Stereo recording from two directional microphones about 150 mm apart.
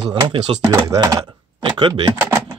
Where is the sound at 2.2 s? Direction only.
15° right (ahead or behind).